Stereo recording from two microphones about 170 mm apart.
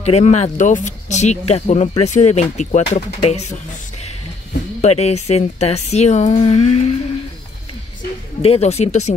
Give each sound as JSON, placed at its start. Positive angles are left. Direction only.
{"t": 0.0, "sound": "speech", "side_deg": 40}
{"t": 4.8, "sound": "speech", "side_deg": 40}
{"t": 8.4, "sound": "speech", "side_deg": 35}